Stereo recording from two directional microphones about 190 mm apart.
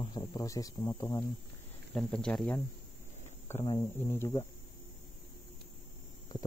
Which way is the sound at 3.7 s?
15° left (ahead or behind).